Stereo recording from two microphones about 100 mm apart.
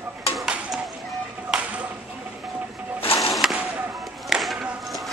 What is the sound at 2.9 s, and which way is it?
Printer, 70° left (ahead or behind).